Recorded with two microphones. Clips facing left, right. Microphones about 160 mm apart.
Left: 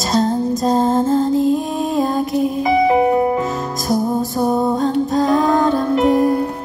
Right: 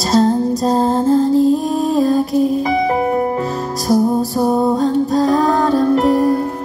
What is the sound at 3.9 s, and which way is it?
Music, 35° right (ahead or behind).